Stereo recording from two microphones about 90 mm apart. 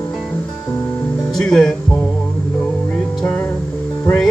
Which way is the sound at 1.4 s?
10° left (ahead or behind).